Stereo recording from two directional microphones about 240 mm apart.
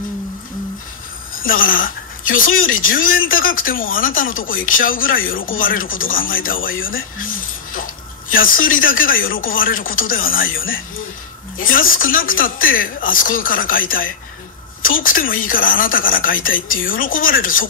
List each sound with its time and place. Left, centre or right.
1.3 s a woman's voice: left